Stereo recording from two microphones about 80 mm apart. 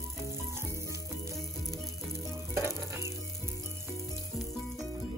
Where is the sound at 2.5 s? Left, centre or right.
Right.